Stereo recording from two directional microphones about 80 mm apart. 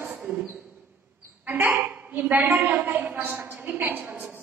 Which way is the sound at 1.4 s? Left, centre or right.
Right.